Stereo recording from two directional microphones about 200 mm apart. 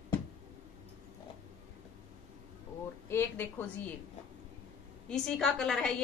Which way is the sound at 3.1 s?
10° left (ahead or behind).